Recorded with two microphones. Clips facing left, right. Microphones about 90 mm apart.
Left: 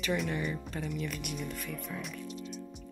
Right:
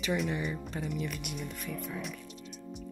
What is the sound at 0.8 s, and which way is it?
Speech, 5° right (ahead or behind).